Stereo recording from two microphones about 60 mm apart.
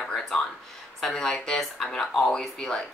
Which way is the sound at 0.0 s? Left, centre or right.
Centre.